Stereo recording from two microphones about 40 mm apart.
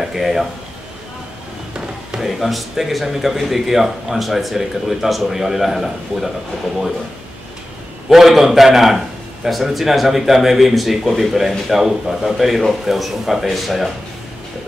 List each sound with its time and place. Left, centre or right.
0.0 s a man's voice: centre
2.1 s speech: centre
8.1 s a man's voice: centre